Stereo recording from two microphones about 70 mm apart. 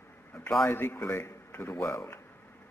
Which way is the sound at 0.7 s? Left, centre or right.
Left.